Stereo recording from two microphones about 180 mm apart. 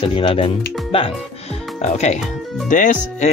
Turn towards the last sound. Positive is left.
turn(degrees=45)  # may be behind; listen again after turning